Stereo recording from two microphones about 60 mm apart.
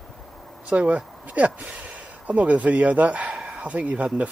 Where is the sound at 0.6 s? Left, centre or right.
Right.